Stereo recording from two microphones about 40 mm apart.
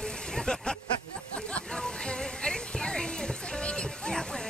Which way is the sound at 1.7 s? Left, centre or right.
Centre.